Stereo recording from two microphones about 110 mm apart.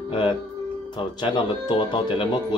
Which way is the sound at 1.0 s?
45° left (ahead or behind).